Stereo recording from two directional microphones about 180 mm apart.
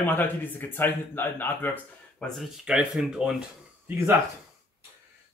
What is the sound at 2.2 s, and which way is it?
Speech, centre (ahead or behind).